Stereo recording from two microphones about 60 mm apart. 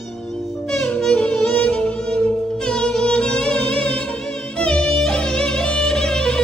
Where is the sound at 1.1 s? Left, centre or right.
Left.